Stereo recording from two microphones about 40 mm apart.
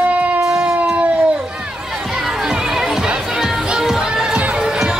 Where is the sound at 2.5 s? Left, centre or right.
Centre.